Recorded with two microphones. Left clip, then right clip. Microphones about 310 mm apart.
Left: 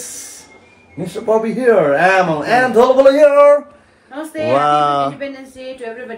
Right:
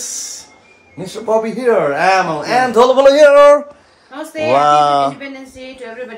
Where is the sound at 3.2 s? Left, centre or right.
Right.